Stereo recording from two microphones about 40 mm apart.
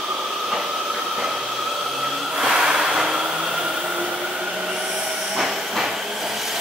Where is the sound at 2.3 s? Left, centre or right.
Centre.